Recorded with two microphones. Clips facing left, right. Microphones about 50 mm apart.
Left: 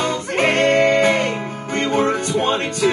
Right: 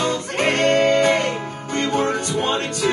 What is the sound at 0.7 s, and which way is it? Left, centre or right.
Music, centre.